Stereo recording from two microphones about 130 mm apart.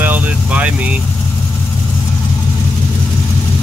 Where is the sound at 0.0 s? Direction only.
10° right (ahead or behind).